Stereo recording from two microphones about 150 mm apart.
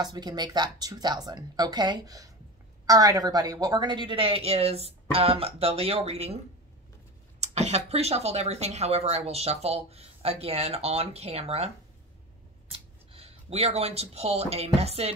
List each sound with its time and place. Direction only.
0.0 s a woman's voice: 25° right (ahead or behind); by 6.3 s 40° right (ahead or behind)
7.3 s speech: 45° right (ahead or behind)
12.7 s speech: 40° right (ahead or behind)